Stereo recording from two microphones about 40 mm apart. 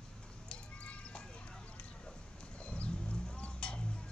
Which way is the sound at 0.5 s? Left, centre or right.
Left.